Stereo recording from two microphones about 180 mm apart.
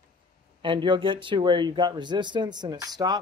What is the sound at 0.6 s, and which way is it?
Speech, 25° right (ahead or behind).